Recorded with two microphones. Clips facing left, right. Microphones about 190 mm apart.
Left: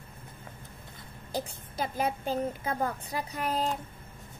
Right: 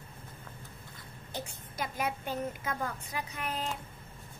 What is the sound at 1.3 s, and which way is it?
A woman's voice, 35° left (ahead or behind).